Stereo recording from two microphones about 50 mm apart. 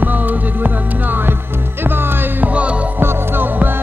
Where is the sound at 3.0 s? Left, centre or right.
Right.